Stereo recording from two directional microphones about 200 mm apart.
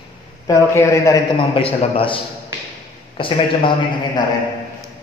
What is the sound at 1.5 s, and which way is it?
A man's voice, 30° left (ahead or behind).